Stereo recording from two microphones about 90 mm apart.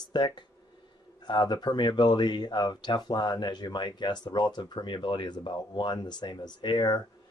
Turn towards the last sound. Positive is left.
turn(degrees=55)  # may be behind; listen again after turning